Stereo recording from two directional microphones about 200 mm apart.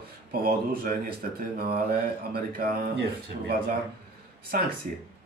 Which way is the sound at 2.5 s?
50° right (ahead or behind).